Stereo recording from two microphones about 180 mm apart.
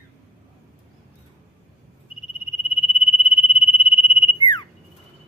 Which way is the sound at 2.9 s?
30° left (ahead or behind).